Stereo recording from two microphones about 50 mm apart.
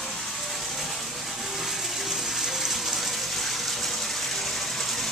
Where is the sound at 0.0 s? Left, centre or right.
Centre.